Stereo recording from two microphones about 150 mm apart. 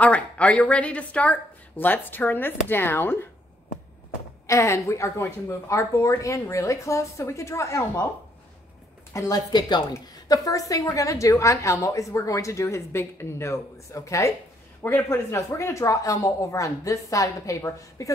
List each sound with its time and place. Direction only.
0.0 s speech: 10° left (ahead or behind)
4.5 s a woman's voice: 20° left (ahead or behind)
9.1 s a woman's voice: 25° left (ahead or behind)